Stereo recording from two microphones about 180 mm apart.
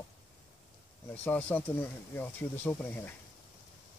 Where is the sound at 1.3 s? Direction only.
10° left (ahead or behind).